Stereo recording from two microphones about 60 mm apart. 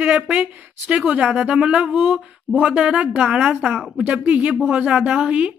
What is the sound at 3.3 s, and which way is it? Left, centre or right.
Speech, centre.